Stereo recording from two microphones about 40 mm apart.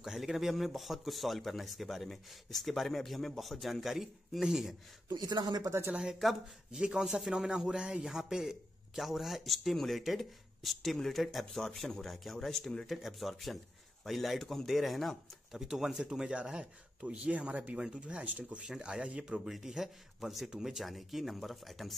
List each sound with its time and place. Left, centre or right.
0.0 s speech: centre
5.9 s speech: centre
8.0 s speech: centre
12.4 s speech: centre
12.8 s speech: centre
15.5 s speech: centre
19.5 s speech: centre